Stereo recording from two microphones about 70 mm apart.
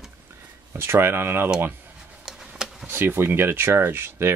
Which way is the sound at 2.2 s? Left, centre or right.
Centre.